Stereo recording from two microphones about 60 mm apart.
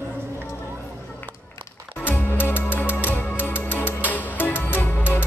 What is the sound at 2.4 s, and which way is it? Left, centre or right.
Music, left.